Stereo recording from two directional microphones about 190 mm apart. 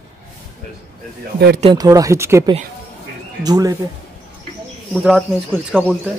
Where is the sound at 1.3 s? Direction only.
60° right (ahead or behind).